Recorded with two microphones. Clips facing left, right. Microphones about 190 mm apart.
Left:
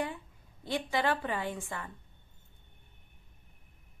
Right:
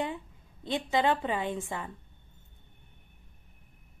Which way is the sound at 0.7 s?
20° right (ahead or behind).